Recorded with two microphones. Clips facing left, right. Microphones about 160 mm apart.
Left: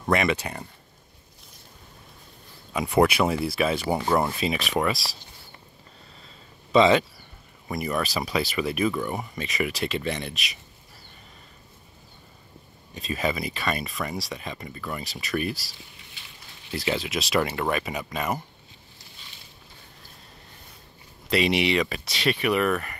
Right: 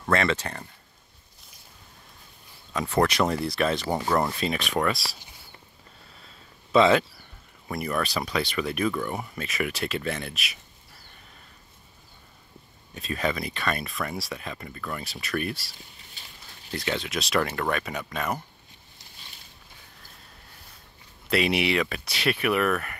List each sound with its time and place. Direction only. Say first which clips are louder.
0.0 s speech: left 1 dB; 15° left (ahead or behind)
2.7 s speech: left 3 dB; 10° left (ahead or behind)
6.7 s speech: left 1 dB; centre (ahead or behind)
12.9 s speech: left 1 dB; centre (ahead or behind)
16.7 s speech: left 2 dB; 5° left (ahead or behind)
21.3 s speech: left 1 dB; centre (ahead or behind)